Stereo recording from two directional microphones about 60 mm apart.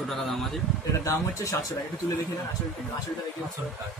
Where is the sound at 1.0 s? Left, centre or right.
Left.